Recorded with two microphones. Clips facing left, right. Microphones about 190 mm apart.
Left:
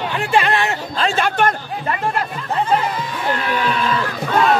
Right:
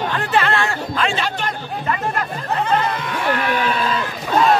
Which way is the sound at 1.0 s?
40° left (ahead or behind).